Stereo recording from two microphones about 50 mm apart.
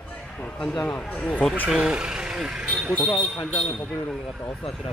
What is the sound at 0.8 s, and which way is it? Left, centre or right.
Speech, left.